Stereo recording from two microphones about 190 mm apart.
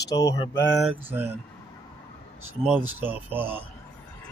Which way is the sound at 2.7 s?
10° right (ahead or behind).